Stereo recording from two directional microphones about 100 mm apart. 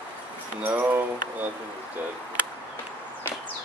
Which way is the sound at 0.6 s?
15° right (ahead or behind).